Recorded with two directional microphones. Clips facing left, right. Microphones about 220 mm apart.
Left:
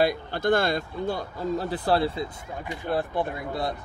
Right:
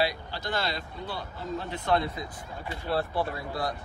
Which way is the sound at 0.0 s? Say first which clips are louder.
Left 6 dB; 50° left (ahead or behind).